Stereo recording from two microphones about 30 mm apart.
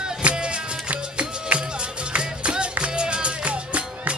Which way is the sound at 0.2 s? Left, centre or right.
Right.